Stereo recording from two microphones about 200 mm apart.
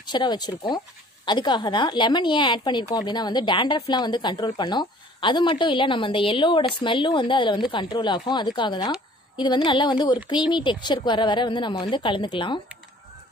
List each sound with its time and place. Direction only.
0.0 s speech: 20° left (ahead or behind)